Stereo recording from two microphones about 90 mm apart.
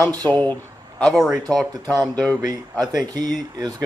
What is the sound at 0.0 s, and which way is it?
Speech, 45° right (ahead or behind).